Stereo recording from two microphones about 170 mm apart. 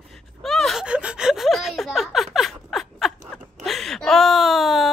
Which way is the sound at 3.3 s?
Centre (ahead or behind).